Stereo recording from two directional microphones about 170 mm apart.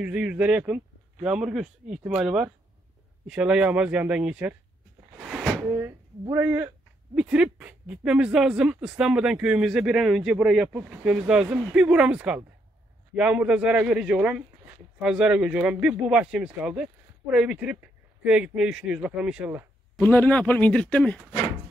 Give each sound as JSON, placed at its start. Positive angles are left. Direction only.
{"t": 0.0, "sound": "speech", "side_deg": -10}
{"t": 5.6, "sound": "speech", "side_deg": -15}
{"t": 20.0, "sound": "speech", "side_deg": 10}